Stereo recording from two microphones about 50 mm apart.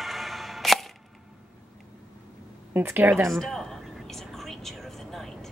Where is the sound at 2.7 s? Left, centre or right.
Right.